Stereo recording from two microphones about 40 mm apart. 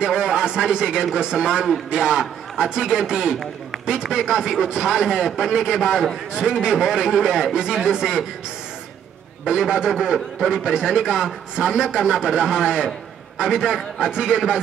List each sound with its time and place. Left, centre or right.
0.0 s a sound: centre
1.1 s a man's voice: centre
9.5 s a man's voice: centre